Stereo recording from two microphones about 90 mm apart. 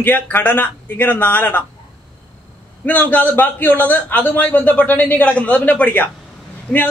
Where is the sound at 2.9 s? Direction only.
20° left (ahead or behind).